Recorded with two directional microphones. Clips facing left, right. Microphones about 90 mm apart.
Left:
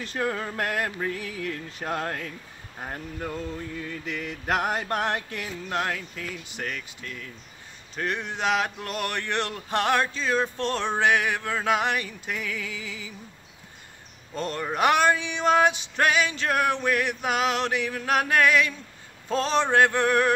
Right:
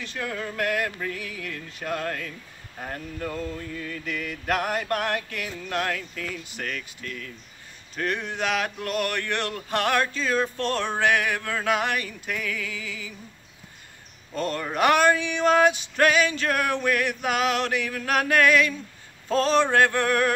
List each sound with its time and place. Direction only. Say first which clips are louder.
0.0 s speech: left 3 dB; 35° left (ahead or behind)
14.3 s speech: right 1 dB; 20° left (ahead or behind)